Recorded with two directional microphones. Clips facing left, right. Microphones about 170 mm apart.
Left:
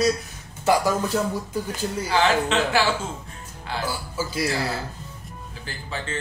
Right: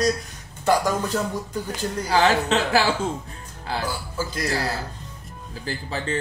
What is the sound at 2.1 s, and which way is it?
Speech, 35° right (ahead or behind).